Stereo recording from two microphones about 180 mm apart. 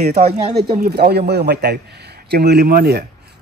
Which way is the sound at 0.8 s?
60° right (ahead or behind).